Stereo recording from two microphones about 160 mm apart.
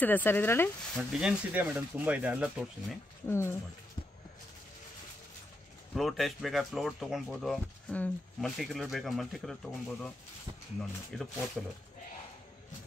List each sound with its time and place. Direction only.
0.0 s speech: 10° left (ahead or behind)
0.9 s speech: 5° right (ahead or behind)
3.3 s speech: 15° left (ahead or behind)
5.9 s speech: centre (ahead or behind)
11.1 s speech: 5° left (ahead or behind)